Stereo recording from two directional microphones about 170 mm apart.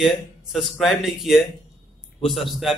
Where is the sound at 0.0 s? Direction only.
Centre (ahead or behind).